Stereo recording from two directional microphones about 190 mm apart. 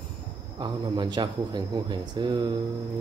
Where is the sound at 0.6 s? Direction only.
25° right (ahead or behind).